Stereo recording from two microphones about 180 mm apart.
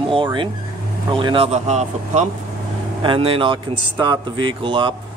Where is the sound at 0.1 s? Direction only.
25° right (ahead or behind).